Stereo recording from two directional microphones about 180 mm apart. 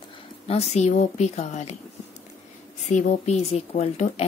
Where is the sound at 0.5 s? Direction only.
35° left (ahead or behind).